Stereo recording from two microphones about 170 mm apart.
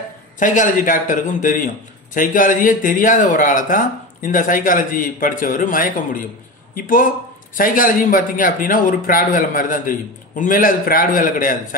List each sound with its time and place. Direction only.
0.4 s a man's voice: 50° left (ahead or behind)